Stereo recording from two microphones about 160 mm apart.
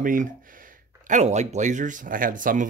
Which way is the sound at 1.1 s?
45° right (ahead or behind).